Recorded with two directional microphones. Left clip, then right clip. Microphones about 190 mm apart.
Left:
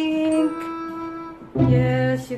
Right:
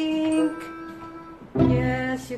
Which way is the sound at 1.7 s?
10° left (ahead or behind).